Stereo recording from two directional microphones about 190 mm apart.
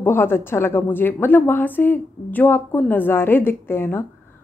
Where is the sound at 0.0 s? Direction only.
10° left (ahead or behind).